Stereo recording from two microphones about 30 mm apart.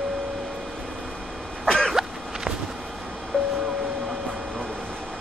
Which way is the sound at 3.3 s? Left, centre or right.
Left.